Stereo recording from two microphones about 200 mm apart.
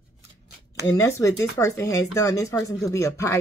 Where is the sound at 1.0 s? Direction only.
15° left (ahead or behind).